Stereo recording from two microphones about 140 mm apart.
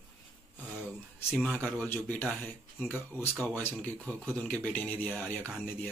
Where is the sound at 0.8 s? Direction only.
10° left (ahead or behind).